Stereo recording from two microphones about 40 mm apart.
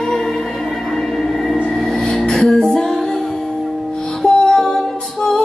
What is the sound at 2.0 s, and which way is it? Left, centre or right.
Music, left.